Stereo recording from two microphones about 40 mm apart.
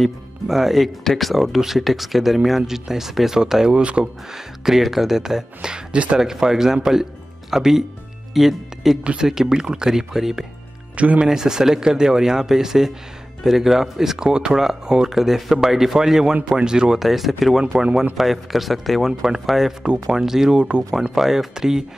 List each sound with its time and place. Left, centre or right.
0.5 s speech: centre
1.4 s speech: centre
3.7 s speech: right
4.3 s speech: centre
11.0 s speech: right
11.2 s speech: centre
17.0 s speech: centre
19.8 s speech: centre